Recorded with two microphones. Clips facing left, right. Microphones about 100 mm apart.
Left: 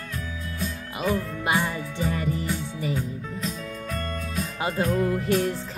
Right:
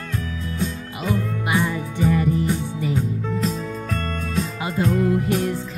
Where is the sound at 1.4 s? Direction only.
20° left (ahead or behind).